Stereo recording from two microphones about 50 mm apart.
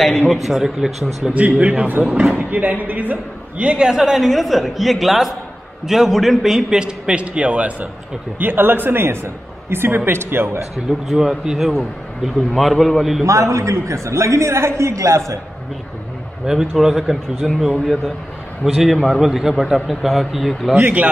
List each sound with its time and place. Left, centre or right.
0.3 s a man's voice: centre
1.3 s a man's voice: right
8.4 s a man's voice: right
10.9 s a man's voice: centre
13.2 s a man's voice: right
16.4 s a man's voice: centre
18.7 s a man's voice: centre
19.2 s a man's voice: centre
20.7 s speech: right